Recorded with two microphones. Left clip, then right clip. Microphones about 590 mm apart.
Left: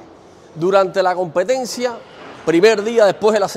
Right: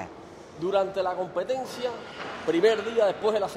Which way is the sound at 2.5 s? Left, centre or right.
Left.